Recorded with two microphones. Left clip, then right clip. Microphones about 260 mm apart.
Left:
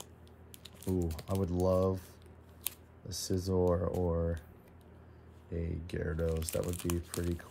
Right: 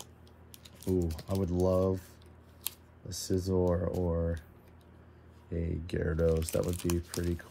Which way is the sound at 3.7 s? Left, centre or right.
Centre.